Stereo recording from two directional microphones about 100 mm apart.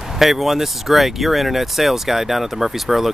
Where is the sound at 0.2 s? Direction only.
Centre (ahead or behind).